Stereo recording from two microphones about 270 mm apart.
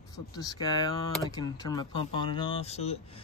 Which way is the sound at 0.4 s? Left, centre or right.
Centre.